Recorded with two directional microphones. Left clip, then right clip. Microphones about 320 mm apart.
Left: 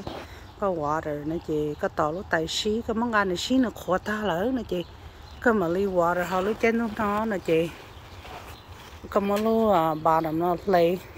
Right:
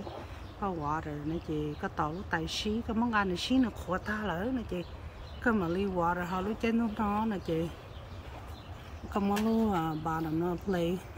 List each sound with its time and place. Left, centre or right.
0.6 s speech: centre
9.1 s speech: centre